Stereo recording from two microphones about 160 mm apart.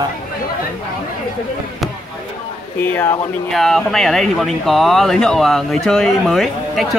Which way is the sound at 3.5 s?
Centre (ahead or behind).